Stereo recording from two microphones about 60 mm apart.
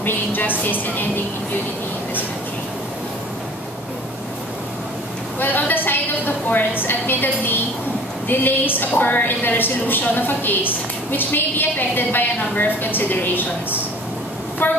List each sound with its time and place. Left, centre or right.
0.0 s a woman's voice: left
5.4 s a woman's voice: left